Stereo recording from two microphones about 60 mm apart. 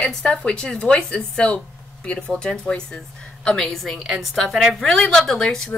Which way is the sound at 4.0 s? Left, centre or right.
Centre.